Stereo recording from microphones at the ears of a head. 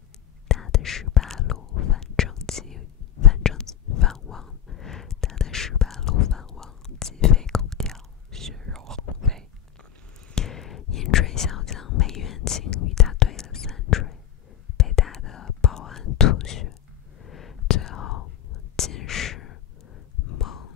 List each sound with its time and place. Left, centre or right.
0.5 s whispering: left
7.8 s whispering: centre
10.3 s whispering: left